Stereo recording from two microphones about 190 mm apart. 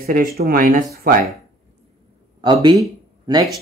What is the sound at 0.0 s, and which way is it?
Speech, 50° right (ahead or behind).